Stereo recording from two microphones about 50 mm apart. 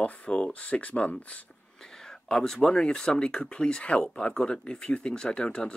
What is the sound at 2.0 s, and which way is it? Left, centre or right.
Speech, centre.